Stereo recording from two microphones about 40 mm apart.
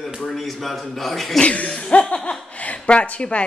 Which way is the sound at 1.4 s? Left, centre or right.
Left.